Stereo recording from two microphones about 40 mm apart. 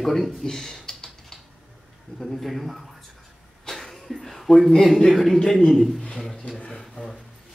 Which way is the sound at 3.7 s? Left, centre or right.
Centre.